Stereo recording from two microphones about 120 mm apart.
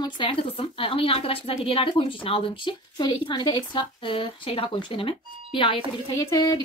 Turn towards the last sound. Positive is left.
turn(degrees=35)  # may be behind; listen again after turning